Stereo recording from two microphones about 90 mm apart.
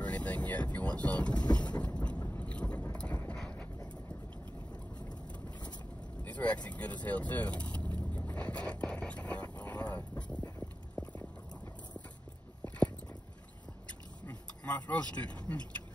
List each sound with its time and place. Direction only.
0.0 s vehicle: 15° left (ahead or behind)
5.1 s vehicle: 50° left (ahead or behind)
6.2 s vehicle: 15° left (ahead or behind)
12.6 s a sound: 15° left (ahead or behind)
14.9 s speech: 15° left (ahead or behind)